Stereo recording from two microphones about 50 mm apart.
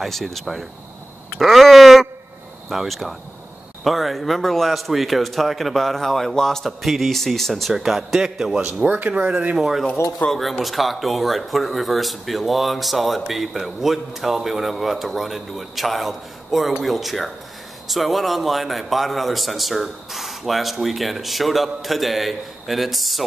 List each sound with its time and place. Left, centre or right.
0.0 s speech: centre
1.4 s speech: centre
7.7 s a man's voice: centre
8.5 s a man's voice: centre
9.6 s speech: centre
10.2 s speech: left
10.6 s speech: centre